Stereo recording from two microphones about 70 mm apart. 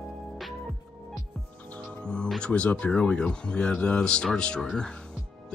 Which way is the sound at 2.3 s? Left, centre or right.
Centre.